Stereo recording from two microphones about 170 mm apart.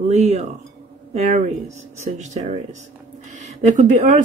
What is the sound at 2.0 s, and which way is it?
Speech, 40° right (ahead or behind).